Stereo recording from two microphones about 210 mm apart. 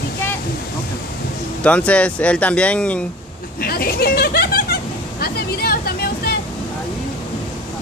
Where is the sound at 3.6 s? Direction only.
45° left (ahead or behind).